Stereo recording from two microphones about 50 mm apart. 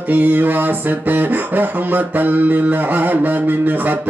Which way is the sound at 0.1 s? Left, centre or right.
Right.